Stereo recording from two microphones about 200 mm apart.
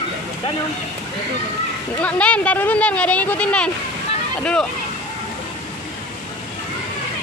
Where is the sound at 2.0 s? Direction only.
5° left (ahead or behind).